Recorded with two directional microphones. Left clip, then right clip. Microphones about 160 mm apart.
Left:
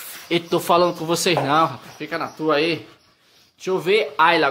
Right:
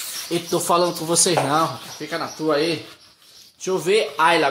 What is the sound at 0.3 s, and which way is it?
Speech, 10° left (ahead or behind).